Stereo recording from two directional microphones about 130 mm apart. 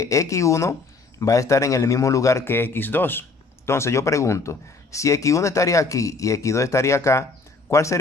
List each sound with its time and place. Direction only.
0.0 s a man's voice: 25° left (ahead or behind)